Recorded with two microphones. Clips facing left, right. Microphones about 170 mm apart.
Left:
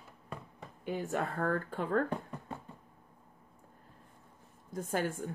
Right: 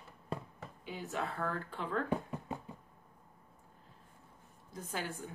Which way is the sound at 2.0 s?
10° right (ahead or behind).